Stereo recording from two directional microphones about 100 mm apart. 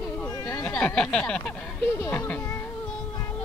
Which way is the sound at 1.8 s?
25° left (ahead or behind).